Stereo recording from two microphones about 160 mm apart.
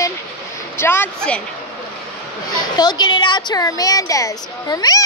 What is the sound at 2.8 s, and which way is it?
A woman's voice, 25° left (ahead or behind).